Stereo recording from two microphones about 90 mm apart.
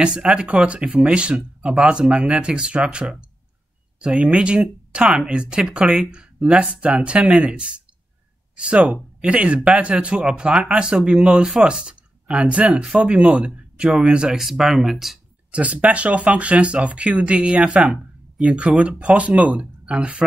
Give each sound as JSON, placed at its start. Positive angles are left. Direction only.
{"t": 0.0, "sound": "speech", "side_deg": -10}
{"t": 15.5, "sound": "speech", "side_deg": -15}